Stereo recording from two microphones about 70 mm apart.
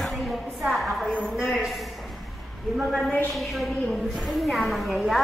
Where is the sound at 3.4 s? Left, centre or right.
Centre.